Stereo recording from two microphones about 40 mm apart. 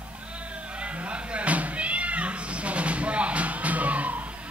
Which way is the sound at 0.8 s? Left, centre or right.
Right.